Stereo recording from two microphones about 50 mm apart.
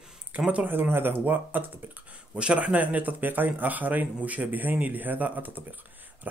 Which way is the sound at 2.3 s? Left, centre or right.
Right.